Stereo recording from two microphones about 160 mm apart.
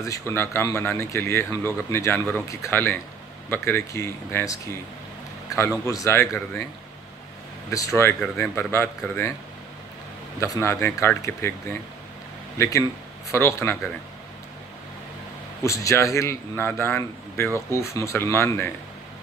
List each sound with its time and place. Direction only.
0.0 s speech: 15° left (ahead or behind)
5.6 s speech: 20° left (ahead or behind)
7.7 s speech: 20° left (ahead or behind)
10.4 s speech: 20° left (ahead or behind)
15.6 s speech: 20° left (ahead or behind)